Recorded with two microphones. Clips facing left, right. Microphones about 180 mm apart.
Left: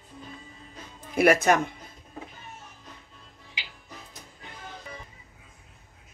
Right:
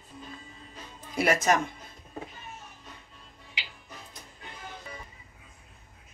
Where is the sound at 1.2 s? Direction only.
60° left (ahead or behind).